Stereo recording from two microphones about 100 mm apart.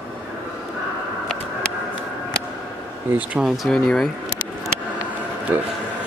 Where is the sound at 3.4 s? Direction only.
Centre (ahead or behind).